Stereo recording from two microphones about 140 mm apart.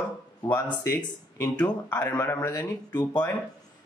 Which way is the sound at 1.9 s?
30° left (ahead or behind).